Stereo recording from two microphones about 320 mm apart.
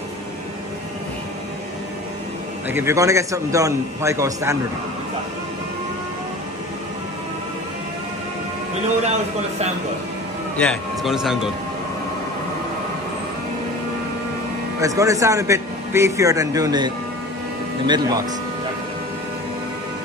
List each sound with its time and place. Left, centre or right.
2.7 s a man's voice: centre
9.0 s speech: right
10.6 s speech: centre
14.8 s a man's voice: centre